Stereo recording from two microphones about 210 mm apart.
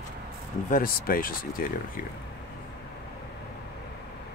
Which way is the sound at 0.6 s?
40° left (ahead or behind).